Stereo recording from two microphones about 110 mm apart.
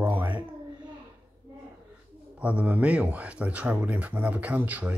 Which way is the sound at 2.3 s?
15° right (ahead or behind).